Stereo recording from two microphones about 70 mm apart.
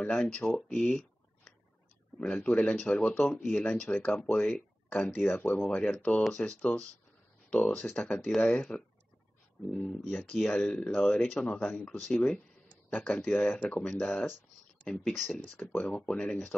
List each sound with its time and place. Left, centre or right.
0.0 s speech: centre
0.7 s a sound: centre
2.1 s speech: centre